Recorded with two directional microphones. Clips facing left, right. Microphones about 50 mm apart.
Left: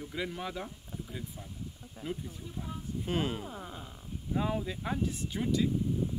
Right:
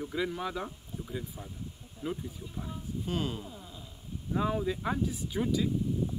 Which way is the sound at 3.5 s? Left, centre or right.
Left.